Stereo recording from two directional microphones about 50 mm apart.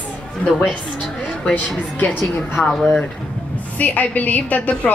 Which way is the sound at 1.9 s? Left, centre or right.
Left.